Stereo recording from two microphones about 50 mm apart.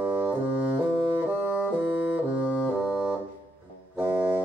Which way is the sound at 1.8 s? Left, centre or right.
Right.